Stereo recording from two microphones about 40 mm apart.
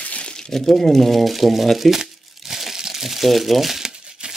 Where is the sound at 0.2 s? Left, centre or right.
Left.